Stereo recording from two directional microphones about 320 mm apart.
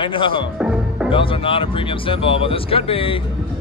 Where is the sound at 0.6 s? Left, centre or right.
Centre.